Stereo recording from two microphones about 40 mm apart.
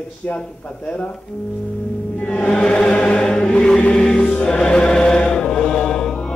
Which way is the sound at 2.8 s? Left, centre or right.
Left.